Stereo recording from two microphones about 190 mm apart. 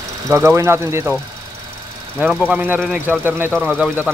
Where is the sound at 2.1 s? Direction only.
10° right (ahead or behind).